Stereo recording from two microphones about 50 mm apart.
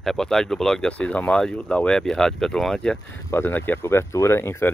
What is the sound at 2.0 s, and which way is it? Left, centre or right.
Speech, centre.